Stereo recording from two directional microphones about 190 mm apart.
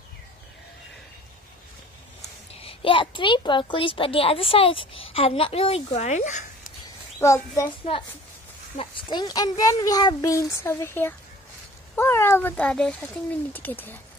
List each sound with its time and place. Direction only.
2.6 s a child's voice: 25° left (ahead or behind)
7.2 s speech: 15° left (ahead or behind)
7.9 s a child's voice: 30° left (ahead or behind); by 13.9 s 10° left (ahead or behind)